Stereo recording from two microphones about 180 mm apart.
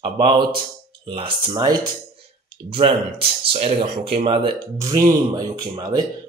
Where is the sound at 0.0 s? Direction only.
30° right (ahead or behind).